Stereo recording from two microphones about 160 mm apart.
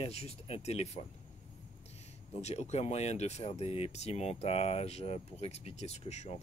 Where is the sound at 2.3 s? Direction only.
40° left (ahead or behind).